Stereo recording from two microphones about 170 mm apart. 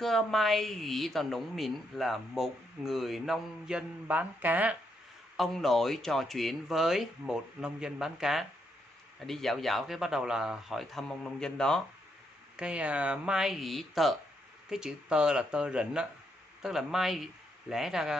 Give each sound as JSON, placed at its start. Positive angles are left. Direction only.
{"t": 0.0, "sound": "speech", "side_deg": 0}
{"t": 5.4, "sound": "speech", "side_deg": 0}
{"t": 12.5, "sound": "speech", "side_deg": -5}